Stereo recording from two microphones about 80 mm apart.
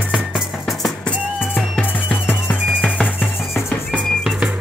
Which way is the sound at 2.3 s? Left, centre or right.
Left.